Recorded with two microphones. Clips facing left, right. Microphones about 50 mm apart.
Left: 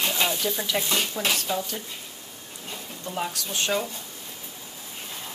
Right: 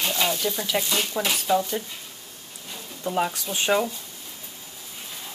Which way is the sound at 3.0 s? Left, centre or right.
Centre.